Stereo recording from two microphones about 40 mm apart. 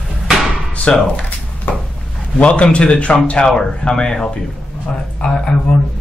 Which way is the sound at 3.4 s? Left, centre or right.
Centre.